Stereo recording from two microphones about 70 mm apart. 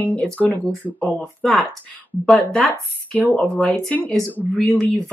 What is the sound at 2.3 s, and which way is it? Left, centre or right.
Speech, centre.